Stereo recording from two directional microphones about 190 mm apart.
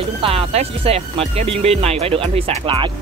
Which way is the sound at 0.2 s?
30° right (ahead or behind).